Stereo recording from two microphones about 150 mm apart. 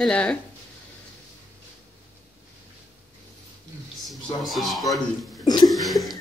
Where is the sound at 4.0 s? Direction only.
Centre (ahead or behind).